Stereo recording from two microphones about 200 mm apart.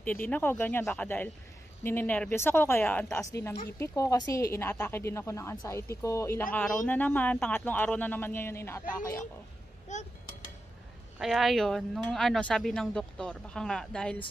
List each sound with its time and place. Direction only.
0.3 s speech: 10° left (ahead or behind)
9.9 s speech: 35° left (ahead or behind)
11.1 s speech: centre (ahead or behind)